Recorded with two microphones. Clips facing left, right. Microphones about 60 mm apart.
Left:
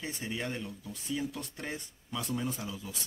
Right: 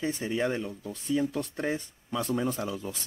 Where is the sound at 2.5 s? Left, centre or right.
Right.